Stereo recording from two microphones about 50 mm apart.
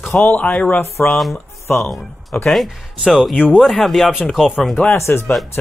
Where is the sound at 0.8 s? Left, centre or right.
Left.